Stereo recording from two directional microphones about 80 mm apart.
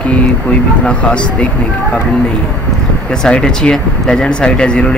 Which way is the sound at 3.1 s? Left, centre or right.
Centre.